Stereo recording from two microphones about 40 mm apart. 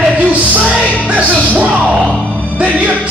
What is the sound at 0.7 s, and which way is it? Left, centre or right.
Music, right.